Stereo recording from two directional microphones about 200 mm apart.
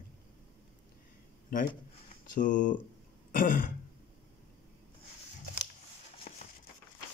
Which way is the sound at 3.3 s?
40° left (ahead or behind).